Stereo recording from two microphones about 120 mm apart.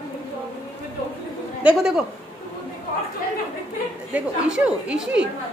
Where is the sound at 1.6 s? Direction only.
5° right (ahead or behind).